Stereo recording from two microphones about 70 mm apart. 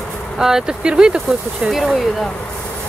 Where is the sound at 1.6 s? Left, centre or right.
Centre.